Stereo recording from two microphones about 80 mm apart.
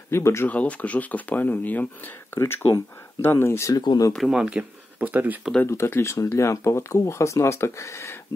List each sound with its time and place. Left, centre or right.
0.1 s speech: left
0.5 s speech: centre; by 3.7 s left
3.7 s speech: left
4.3 s speech: centre
5.6 s speech: left